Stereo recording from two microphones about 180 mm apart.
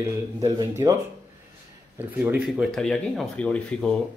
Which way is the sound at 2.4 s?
Centre (ahead or behind).